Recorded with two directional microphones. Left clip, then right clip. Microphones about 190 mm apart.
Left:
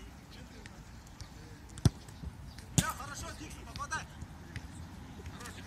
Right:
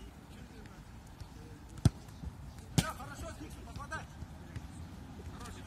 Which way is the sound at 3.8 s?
55° right (ahead or behind).